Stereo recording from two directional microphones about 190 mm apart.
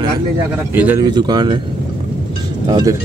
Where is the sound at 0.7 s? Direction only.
10° right (ahead or behind).